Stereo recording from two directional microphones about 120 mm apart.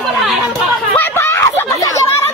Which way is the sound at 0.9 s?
20° left (ahead or behind).